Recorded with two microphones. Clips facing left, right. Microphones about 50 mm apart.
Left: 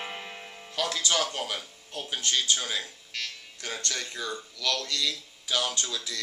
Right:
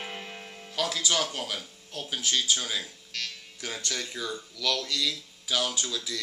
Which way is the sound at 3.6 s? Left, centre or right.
Centre.